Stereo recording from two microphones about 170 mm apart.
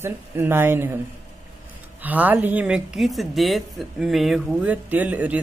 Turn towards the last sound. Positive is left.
turn(degrees=-10)  # may be behind; listen again after turning